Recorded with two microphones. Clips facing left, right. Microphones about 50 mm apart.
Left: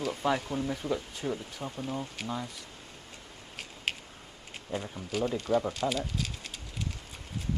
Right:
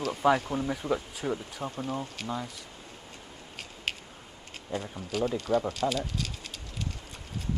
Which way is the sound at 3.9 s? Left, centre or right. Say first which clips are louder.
Even; centre.